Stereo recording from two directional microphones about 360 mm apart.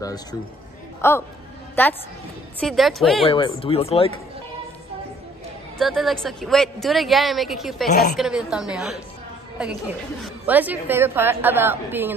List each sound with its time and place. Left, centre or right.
0.0 s a woman's voice: centre
3.3 s speech: centre
5.8 s a woman's voice: centre